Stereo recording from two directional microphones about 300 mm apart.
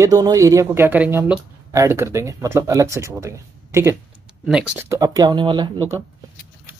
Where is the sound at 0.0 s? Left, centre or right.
Centre.